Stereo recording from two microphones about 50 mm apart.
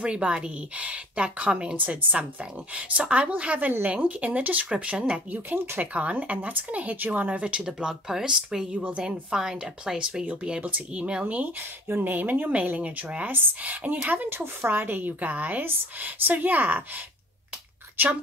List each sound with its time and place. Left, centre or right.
0.0 s speech: right
1.8 s speech: right
7.6 s speech: centre
8.7 s speech: right
9.0 s speech: centre; by 14.3 s right
14.3 s a woman's voice: right